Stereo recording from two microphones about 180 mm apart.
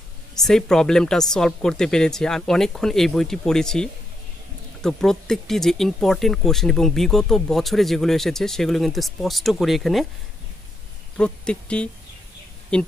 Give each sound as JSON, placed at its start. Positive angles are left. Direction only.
{"t": 0.4, "sound": "speech", "side_deg": 5}
{"t": 11.1, "sound": "speech", "side_deg": 5}